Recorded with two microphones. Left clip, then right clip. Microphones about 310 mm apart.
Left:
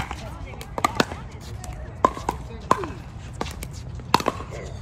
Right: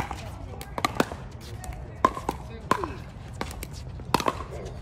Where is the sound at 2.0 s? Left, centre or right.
Centre.